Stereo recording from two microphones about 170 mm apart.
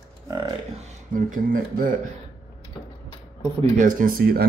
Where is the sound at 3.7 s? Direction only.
55° right (ahead or behind).